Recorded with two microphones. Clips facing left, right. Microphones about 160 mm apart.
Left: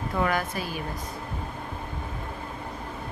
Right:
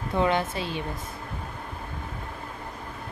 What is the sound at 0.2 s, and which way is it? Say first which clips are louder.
Speech: right 3 dB; 25° right (ahead or behind).